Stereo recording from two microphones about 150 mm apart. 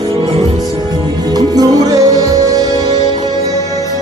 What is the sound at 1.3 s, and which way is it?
Music, 25° right (ahead or behind).